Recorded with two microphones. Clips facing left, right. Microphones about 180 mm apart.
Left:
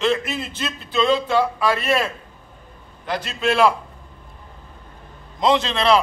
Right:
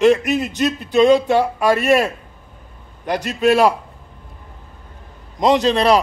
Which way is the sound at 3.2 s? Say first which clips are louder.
Right 4 dB; 40° right (ahead or behind).